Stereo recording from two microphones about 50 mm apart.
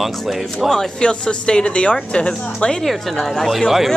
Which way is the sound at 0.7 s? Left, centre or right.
Centre.